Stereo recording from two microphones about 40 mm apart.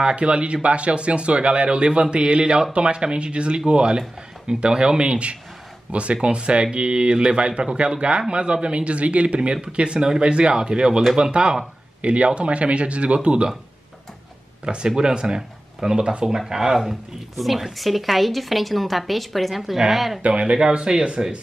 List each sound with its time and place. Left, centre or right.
0.0 s a man's voice: right
14.6 s speech: right
17.4 s a woman's voice: centre
20.2 s speech: right